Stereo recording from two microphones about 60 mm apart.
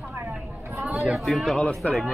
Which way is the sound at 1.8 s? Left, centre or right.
Left.